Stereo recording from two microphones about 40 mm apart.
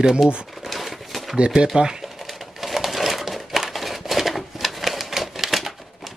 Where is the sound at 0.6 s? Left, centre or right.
Centre.